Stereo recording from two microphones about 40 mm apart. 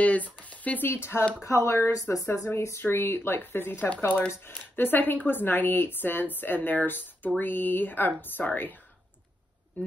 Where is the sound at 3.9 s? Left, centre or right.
Left.